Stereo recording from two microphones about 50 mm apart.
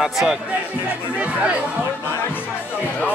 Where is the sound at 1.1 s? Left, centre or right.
Right.